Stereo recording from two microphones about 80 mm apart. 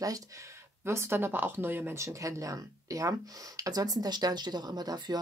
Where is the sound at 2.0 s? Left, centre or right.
Right.